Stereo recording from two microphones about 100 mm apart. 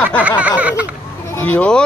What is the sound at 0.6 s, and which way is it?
Speech, 15° right (ahead or behind).